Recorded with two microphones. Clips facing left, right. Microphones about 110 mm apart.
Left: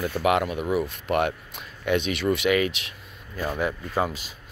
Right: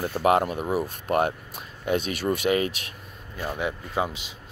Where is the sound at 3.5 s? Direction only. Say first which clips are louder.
Left 2 dB; 20° right (ahead or behind).